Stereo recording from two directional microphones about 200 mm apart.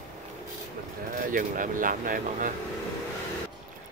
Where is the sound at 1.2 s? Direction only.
40° right (ahead or behind).